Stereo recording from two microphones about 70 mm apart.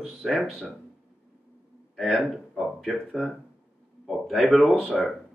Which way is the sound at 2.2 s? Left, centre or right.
Centre.